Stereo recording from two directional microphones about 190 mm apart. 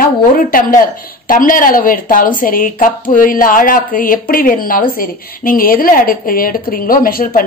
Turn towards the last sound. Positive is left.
turn(degrees=50)  # may be behind; listen again after turning